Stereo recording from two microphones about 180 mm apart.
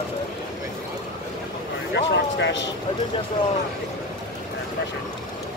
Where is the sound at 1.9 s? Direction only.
75° left (ahead or behind).